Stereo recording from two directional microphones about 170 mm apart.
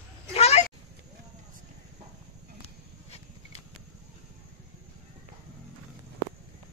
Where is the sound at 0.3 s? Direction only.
35° left (ahead or behind).